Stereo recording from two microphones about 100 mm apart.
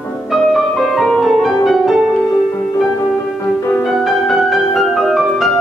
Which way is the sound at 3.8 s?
Centre (ahead or behind).